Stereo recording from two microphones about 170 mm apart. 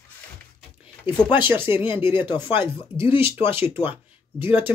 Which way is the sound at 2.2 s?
25° left (ahead or behind).